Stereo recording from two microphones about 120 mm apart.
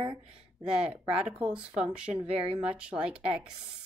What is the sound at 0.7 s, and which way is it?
Speech, 5° right (ahead or behind).